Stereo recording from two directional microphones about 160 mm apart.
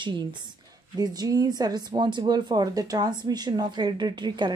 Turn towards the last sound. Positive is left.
turn(degrees=-30)  # may be behind; listen again after turning